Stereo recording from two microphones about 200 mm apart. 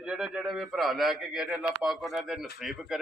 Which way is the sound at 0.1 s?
Centre (ahead or behind).